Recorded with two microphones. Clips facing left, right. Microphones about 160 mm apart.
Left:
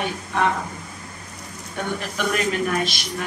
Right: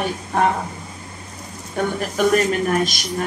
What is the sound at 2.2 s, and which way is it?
Speech, 40° right (ahead or behind).